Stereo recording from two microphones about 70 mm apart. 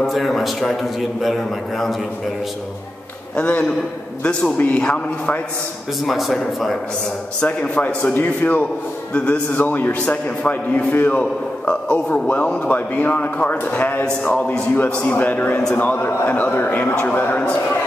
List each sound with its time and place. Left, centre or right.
0.0 s a man's voice: centre
3.3 s a man's voice: centre
6.0 s a man's voice: centre
7.3 s a man's voice: centre
9.1 s a man's voice: centre
9.5 s a man's voice: left